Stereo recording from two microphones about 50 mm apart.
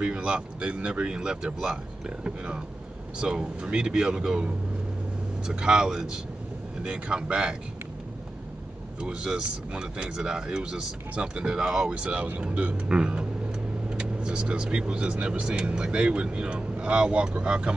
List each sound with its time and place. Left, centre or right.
0.0 s speech: right
9.0 s speech: centre
11.9 s speech: right